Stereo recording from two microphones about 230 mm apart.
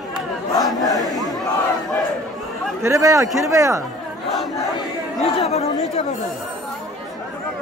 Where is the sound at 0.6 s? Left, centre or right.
Centre.